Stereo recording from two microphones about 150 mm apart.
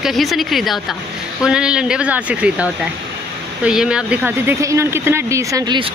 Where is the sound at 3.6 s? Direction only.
5° right (ahead or behind).